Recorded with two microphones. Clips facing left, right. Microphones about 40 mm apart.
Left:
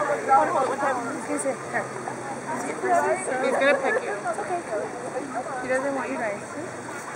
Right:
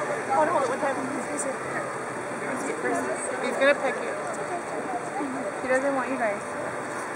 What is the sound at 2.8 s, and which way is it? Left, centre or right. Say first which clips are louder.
Speech: left 8 dB; centre.